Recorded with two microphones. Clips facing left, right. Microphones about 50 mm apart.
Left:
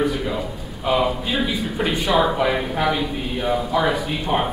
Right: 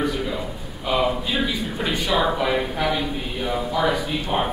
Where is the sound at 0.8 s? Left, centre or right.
Centre.